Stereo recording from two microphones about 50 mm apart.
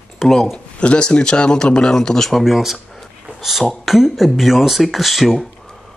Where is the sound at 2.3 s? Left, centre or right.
Centre.